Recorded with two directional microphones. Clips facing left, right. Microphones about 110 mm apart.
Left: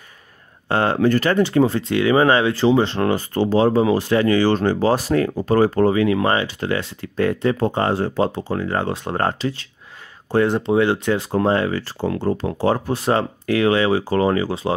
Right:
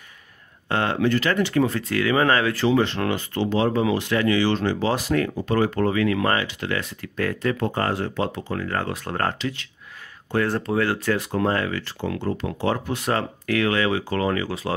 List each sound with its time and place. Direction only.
0.7 s speech: 35° left (ahead or behind)
10.3 s speech: 20° left (ahead or behind)